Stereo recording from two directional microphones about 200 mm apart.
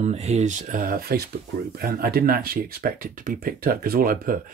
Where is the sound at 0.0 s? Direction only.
35° right (ahead or behind).